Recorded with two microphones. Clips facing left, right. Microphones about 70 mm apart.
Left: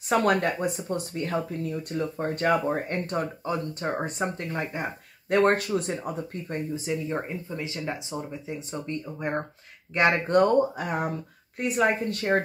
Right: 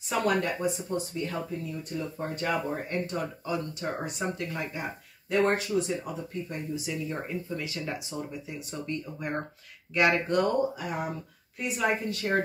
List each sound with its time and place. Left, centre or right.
0.1 s speech: left